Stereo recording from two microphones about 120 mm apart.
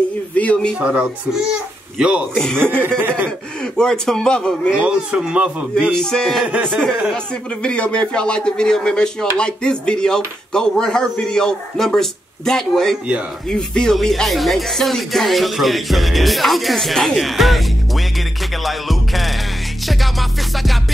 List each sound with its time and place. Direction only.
0.3 s speech: 10° left (ahead or behind)
0.7 s speech: 10° right (ahead or behind)
2.3 s speech: 5° left (ahead or behind)
2.6 s speech: 15° right (ahead or behind)
3.7 s speech: 5° left (ahead or behind)
4.7 s speech: 10° right (ahead or behind)
5.9 s speech: 5° left (ahead or behind)
6.4 s speech: 10° right (ahead or behind)
6.7 s speech: 5° left (ahead or behind)
18.6 s music: centre (ahead or behind)